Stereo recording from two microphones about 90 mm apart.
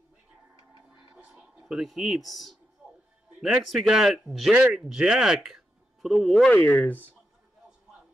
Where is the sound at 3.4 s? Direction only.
5° right (ahead or behind).